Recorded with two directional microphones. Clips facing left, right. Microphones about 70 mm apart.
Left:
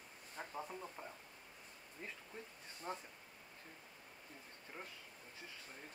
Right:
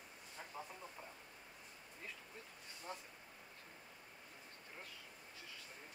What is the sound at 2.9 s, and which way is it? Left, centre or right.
Speech, left.